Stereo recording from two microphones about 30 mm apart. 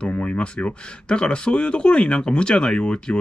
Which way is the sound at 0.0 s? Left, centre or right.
Left.